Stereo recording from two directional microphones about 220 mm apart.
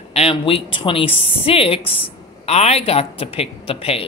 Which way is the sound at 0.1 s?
25° left (ahead or behind).